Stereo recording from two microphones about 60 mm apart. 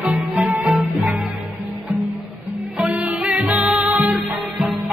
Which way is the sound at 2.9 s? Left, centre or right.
Centre.